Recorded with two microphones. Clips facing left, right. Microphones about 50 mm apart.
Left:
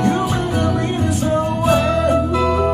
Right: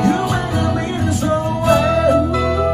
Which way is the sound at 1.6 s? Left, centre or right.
Centre.